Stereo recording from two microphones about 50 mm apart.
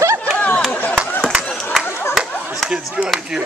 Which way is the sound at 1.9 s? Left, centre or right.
Left.